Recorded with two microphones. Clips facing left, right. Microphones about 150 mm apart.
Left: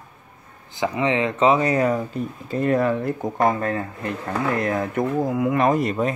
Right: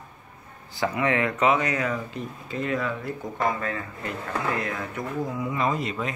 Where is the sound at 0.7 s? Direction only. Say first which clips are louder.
Left 3 dB; 20° left (ahead or behind); by 5.9 s 55° left (ahead or behind).